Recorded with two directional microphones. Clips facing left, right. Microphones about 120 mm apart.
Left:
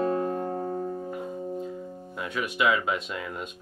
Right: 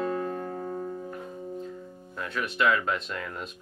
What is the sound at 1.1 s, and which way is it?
Music, 10° left (ahead or behind).